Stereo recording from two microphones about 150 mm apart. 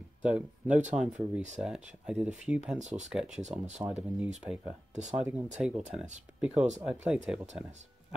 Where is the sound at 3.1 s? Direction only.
5° right (ahead or behind).